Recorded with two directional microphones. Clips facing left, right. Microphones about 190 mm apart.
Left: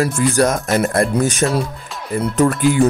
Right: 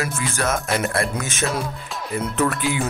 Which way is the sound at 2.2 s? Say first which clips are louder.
Left 7 dB; 45° left (ahead or behind).